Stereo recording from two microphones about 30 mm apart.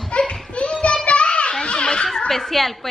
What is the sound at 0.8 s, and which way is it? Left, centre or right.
Children playing, left.